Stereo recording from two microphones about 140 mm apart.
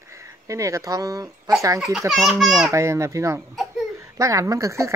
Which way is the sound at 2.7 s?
20° right (ahead or behind).